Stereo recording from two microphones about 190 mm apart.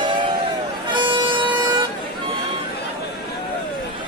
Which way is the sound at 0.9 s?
25° right (ahead or behind).